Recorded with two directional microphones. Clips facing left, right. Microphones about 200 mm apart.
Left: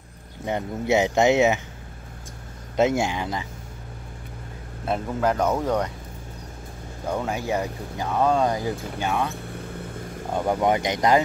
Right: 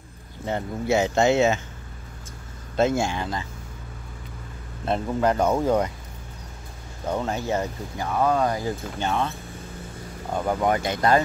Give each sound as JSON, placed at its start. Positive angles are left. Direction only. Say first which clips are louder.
{"t": 0.5, "sound": "speech", "louder": "left 1 dB", "side_deg": 20}
{"t": 2.7, "sound": "speech", "louder": "left 1 dB", "side_deg": 15}
{"t": 4.8, "sound": "speech", "louder": "right 1 dB", "side_deg": 5}
{"t": 7.1, "sound": "speech", "louder": "even", "side_deg": 10}
{"t": 10.3, "sound": "speech", "louder": "left 1 dB", "side_deg": 15}